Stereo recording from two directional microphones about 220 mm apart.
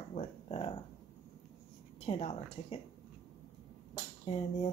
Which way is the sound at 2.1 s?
30° left (ahead or behind).